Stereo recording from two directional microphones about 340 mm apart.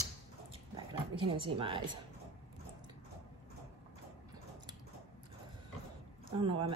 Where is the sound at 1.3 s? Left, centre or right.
Centre.